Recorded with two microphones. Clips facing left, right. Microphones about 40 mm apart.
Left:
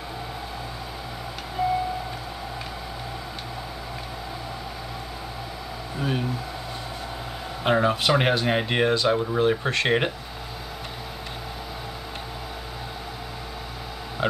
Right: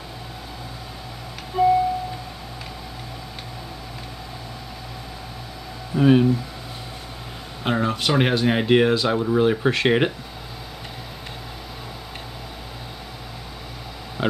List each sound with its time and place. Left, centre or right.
5.9 s speech: right
7.6 s speech: centre